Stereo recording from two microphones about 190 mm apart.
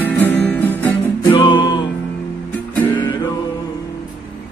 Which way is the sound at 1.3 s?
20° left (ahead or behind).